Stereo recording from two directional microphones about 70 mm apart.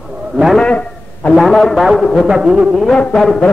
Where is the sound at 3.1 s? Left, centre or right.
Centre.